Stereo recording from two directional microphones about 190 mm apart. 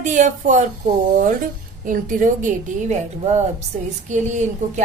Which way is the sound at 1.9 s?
45° right (ahead or behind).